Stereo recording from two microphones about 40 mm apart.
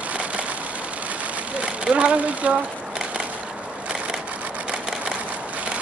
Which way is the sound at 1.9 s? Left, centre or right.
Right.